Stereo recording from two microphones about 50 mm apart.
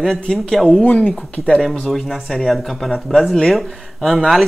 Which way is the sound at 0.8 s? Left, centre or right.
Left.